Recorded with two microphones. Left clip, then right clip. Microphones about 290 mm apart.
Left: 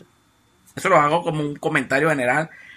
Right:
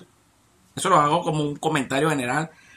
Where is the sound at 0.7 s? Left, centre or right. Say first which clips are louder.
Left 2 dB; centre.